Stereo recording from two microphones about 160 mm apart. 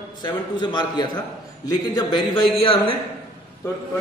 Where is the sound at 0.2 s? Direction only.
30° left (ahead or behind).